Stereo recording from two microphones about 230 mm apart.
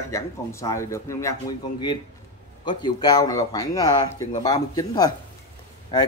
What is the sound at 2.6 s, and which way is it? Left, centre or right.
A man's voice, centre.